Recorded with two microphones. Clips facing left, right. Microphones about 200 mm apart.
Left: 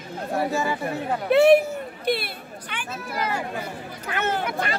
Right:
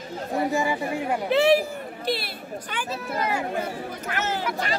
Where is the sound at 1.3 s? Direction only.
55° left (ahead or behind).